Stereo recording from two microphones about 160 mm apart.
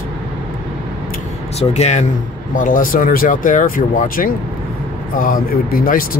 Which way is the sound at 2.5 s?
55° left (ahead or behind).